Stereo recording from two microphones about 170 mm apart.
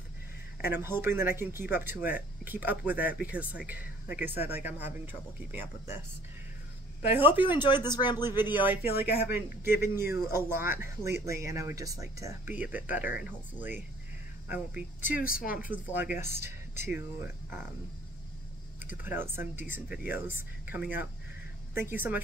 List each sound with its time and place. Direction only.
0.7 s speech: 15° right (ahead or behind)
7.4 s speech: 30° left (ahead or behind)
8.6 s speech: 10° right (ahead or behind)
15.2 s speech: 55° left (ahead or behind)
15.7 s speech: 10° right (ahead or behind)
18.8 s speech: 10° right (ahead or behind)